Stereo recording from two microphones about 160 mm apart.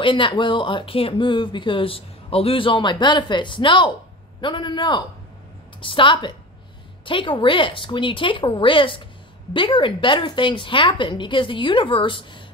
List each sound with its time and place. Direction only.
0.0 s a man's voice: 30° left (ahead or behind)